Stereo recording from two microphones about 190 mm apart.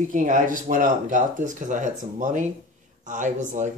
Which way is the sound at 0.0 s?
45° right (ahead or behind).